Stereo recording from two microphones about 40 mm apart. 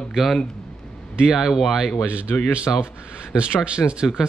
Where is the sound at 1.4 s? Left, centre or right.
Centre.